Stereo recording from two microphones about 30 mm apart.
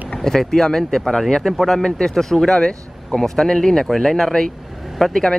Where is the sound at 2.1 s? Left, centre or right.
Centre.